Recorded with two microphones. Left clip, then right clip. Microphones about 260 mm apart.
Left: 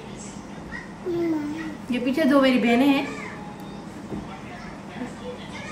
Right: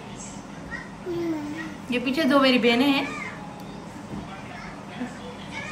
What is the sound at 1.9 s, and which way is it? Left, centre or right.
A woman's voice, centre.